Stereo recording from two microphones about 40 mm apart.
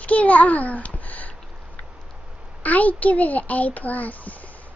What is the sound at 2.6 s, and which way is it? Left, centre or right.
A child's voice, left.